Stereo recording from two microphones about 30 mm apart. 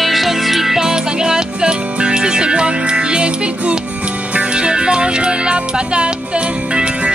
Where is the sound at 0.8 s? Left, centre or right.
Right.